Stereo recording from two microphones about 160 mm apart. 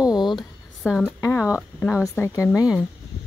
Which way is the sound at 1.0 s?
15° left (ahead or behind).